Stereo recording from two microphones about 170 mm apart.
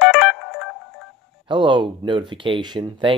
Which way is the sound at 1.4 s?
30° right (ahead or behind).